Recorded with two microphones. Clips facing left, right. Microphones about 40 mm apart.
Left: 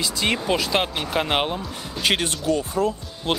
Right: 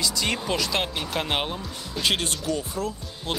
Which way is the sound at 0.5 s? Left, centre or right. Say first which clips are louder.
Left 4 dB; centre.